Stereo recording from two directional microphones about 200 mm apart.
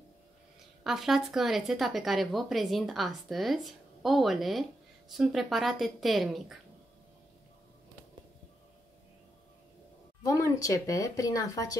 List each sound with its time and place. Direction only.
0.8 s speech: centre (ahead or behind)
10.2 s speech: 15° left (ahead or behind)